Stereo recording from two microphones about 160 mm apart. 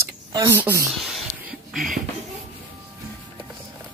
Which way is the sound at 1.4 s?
5° right (ahead or behind).